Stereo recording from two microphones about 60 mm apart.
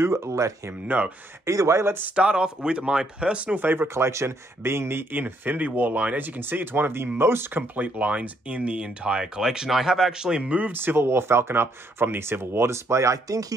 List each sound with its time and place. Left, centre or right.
0.0 s speech: right
0.9 s speech: right
1.4 s speech: right
2.1 s speech: centre
3.5 s speech: right
3.8 s speech: right
7.7 s speech: right
10.7 s speech: right